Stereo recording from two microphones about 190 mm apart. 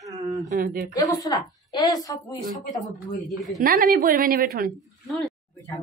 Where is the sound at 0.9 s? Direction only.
20° left (ahead or behind).